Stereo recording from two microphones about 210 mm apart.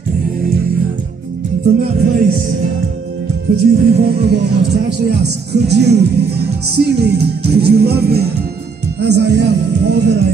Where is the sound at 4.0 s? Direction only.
50° right (ahead or behind).